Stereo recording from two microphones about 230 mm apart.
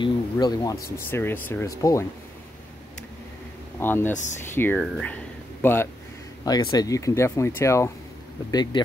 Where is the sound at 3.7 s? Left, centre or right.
Centre.